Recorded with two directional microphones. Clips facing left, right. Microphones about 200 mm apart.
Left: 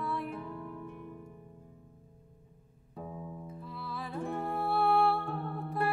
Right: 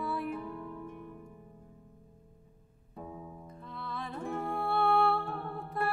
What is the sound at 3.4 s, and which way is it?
Music, 5° left (ahead or behind).